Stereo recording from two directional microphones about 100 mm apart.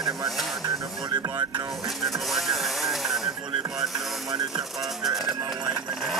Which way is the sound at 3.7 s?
40° right (ahead or behind).